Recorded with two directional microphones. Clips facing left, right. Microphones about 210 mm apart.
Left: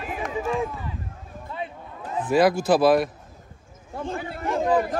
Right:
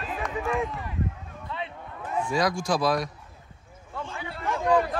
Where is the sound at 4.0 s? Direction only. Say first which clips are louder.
Left 6 dB; 50° left (ahead or behind).